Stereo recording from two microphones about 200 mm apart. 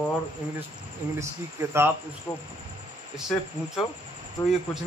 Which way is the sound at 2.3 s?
15° left (ahead or behind).